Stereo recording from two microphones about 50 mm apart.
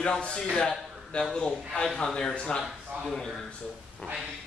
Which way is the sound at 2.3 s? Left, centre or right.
Centre.